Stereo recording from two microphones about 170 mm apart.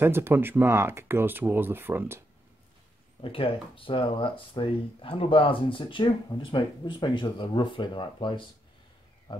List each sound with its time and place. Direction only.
0.0 s speech: 15° right (ahead or behind)
3.2 s speech: 30° left (ahead or behind)